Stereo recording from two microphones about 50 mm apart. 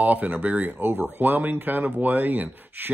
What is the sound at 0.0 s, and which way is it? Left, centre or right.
Speech, right.